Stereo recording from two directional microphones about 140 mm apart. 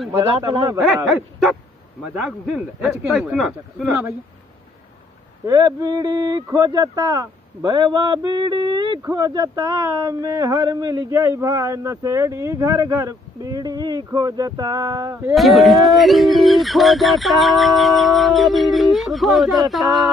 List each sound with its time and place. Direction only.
0.4 s speech: 30° right (ahead or behind)
0.7 s speech: 5° right (ahead or behind)
5.4 s speech: 30° right (ahead or behind)
15.3 s speech: centre (ahead or behind)